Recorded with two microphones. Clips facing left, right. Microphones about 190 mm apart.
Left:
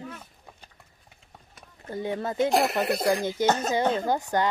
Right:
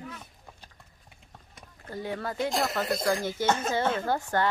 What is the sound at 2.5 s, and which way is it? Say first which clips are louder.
Speech: left 6 dB; 65° left (ahead or behind).